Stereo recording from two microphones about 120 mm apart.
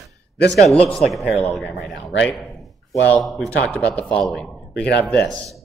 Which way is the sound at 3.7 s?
10° left (ahead or behind).